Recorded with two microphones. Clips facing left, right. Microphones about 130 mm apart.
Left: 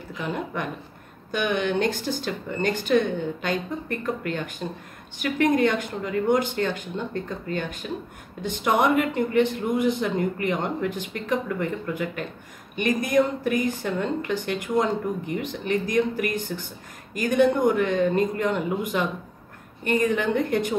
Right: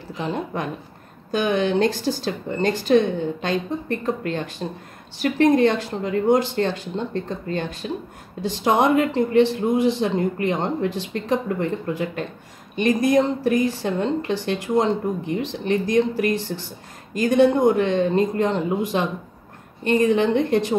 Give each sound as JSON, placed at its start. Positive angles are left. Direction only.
{"t": 0.1, "sound": "a woman's voice", "side_deg": -30}